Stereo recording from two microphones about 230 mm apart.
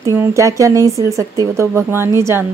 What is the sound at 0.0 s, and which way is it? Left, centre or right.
A woman's voice, centre.